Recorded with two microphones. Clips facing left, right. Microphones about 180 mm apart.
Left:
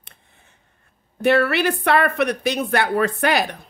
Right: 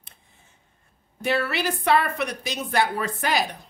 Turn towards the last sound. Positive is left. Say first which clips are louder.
# left 5 dB
turn(degrees=65)  # may be behind; listen again after turning